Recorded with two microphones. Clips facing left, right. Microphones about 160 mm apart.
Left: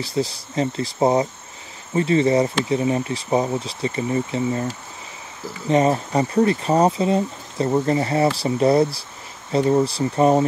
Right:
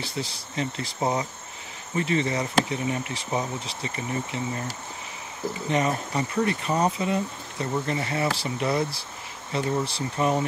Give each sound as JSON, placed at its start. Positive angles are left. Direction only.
{"t": 0.0, "sound": "speech", "side_deg": 40}
{"t": 5.7, "sound": "speech", "side_deg": 30}